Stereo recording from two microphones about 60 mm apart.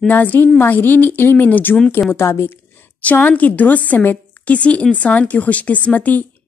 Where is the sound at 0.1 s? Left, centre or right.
Left.